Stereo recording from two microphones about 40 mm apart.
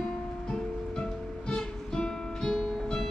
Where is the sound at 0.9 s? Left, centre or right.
Centre.